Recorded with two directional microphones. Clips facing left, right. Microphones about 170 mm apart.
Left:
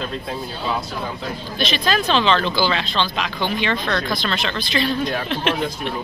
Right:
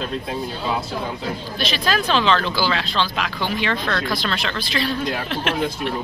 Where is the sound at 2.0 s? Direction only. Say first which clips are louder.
Left 1 dB; 5° right (ahead or behind).